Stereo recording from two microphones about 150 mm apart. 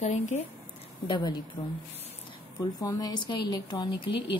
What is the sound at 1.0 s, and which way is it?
Speech, 30° left (ahead or behind).